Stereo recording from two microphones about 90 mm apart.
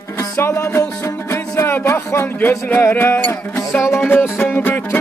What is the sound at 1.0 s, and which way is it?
Speech, 30° left (ahead or behind).